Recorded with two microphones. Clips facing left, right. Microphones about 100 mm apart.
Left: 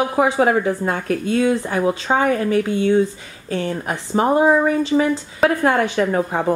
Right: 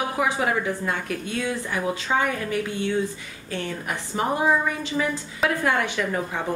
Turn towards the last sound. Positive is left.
turn(degrees=40)  # may be behind; listen again after turning